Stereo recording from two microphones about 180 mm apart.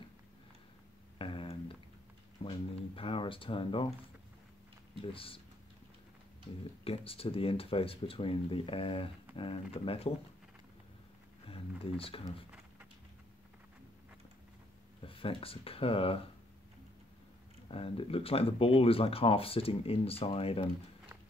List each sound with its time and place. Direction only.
1.1 s a sound: 30° left (ahead or behind)
3.0 s speech: 30° left (ahead or behind)
5.1 s speech: 30° left (ahead or behind)
6.8 s speech: 30° left (ahead or behind)
11.4 s a sound: 30° left (ahead or behind)
15.0 s speech: 30° left (ahead or behind)
17.6 s speech: 30° left (ahead or behind)